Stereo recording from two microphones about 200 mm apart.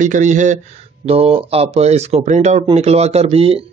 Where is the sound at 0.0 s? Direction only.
40° right (ahead or behind).